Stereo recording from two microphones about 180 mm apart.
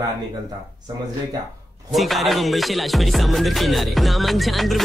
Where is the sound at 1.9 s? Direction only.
Centre (ahead or behind).